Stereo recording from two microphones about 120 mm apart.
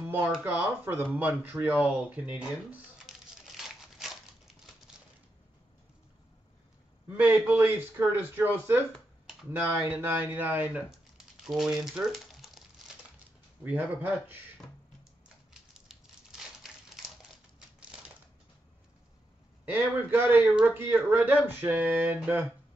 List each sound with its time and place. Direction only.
0.0 s a sound: 15° right (ahead or behind)
0.4 s a man's voice: 15° right (ahead or behind)
2.3 s crumpling: 5° right (ahead or behind)
7.1 s a man's voice: 15° right (ahead or behind)
8.9 s computer keyboard: centre (ahead or behind)
9.5 s a man's voice: 15° right (ahead or behind)
10.9 s a sound: 5° right (ahead or behind)
13.7 s a man's voice: 15° right (ahead or behind)
15.9 s crumpling: 5° right (ahead or behind)
19.6 s a man's voice: 15° right (ahead or behind)